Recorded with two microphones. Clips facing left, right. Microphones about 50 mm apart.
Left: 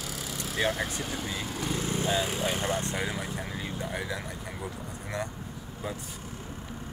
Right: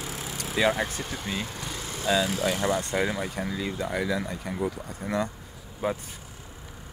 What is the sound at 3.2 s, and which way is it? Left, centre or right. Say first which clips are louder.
Speech: right 5 dB; right.